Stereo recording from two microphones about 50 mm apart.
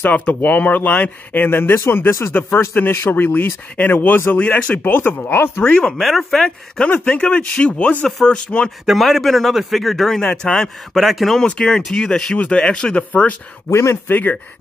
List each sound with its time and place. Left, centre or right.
0.1 s speech: left
2.0 s speech: left
2.8 s speech: left
4.4 s speech: left
4.8 s speech: left
5.6 s speech: centre
6.0 s speech: centre
6.4 s speech: left
8.8 s speech: centre
11.0 s speech: centre
11.3 s speech: centre
13.1 s speech: left
13.7 s speech: left
14.0 s speech: left